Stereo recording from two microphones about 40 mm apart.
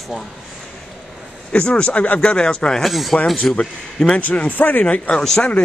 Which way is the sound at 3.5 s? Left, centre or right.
Left.